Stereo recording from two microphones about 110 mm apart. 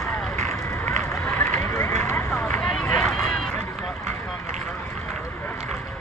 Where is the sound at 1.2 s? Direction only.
20° left (ahead or behind).